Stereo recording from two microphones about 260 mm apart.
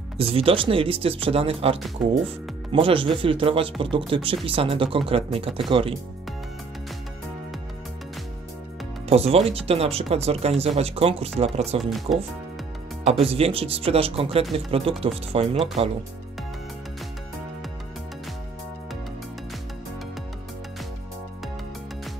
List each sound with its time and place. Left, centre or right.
0.2 s speech: right
9.1 s speech: right
11.8 s speech: centre
13.0 s speech: right